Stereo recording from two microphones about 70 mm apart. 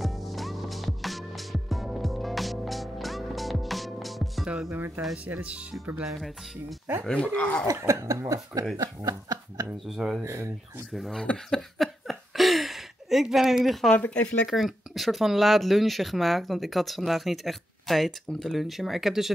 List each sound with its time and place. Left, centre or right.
0.0 s music: centre
4.7 s speech: right
5.1 s speech: centre
6.0 s speech: centre
7.3 s speech: centre
7.6 s speech: right
9.8 s speech: centre
10.2 s speech: right
10.9 s speech: centre
11.2 s a sound: centre
13.9 s speech: left
14.5 s speech: centre